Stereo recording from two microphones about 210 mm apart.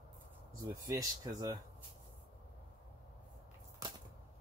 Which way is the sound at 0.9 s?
15° right (ahead or behind).